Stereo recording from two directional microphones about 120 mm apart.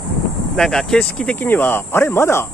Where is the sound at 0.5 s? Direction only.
5° left (ahead or behind).